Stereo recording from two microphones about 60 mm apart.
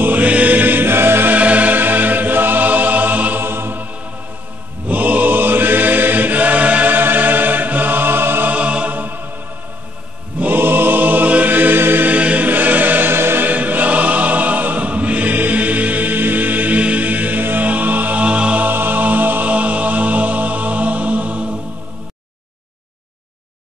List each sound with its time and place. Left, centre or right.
0.0 s music: right
3.4 s music: right
4.8 s mantra: right
8.5 s music: right
10.4 s choir: right
13.5 s choir: right
18.7 s music: right